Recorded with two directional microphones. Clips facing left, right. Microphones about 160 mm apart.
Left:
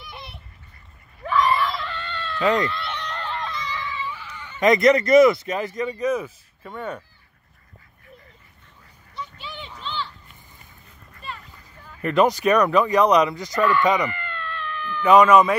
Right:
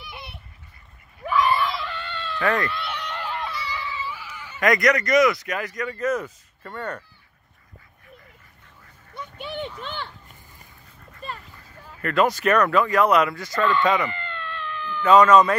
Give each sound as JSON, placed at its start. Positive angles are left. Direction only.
{"t": 0.0, "sound": "duck", "side_deg": 0}
{"t": 1.2, "sound": "screaming", "side_deg": -5}
{"t": 2.3, "sound": "speech", "side_deg": 20}
{"t": 2.7, "sound": "a sound", "side_deg": -5}
{"t": 4.6, "sound": "speech", "side_deg": 25}
{"t": 5.9, "sound": "speech", "side_deg": 10}
{"t": 9.1, "sound": "a sound", "side_deg": -55}
{"t": 12.0, "sound": "speech", "side_deg": 20}
{"t": 14.1, "sound": "a sound", "side_deg": -20}
{"t": 15.0, "sound": "speech", "side_deg": 15}